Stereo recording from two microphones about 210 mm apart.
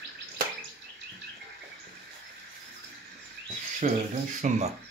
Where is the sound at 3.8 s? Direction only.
35° right (ahead or behind).